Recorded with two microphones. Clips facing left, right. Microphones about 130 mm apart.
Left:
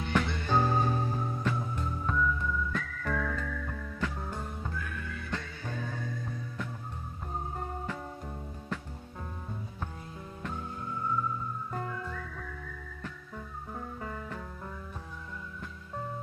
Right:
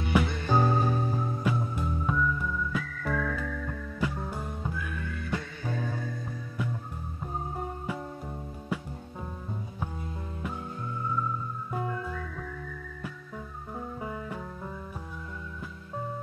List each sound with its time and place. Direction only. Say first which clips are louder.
0.1 s music: right 3 dB; 10° right (ahead or behind)
8.7 s music: right 4 dB; 10° right (ahead or behind)
13.7 s music: right 4 dB; 15° right (ahead or behind)